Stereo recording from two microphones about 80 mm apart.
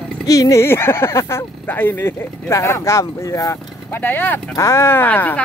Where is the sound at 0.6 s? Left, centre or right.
Left.